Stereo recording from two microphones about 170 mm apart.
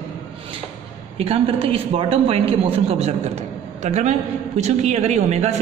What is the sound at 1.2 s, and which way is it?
Speech, 35° right (ahead or behind).